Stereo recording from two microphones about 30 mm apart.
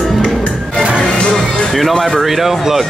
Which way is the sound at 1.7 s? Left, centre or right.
Centre.